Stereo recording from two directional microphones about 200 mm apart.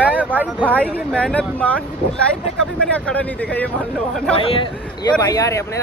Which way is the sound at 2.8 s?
5° left (ahead or behind).